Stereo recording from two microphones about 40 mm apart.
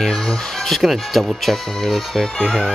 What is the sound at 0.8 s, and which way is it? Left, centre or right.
Speech, centre.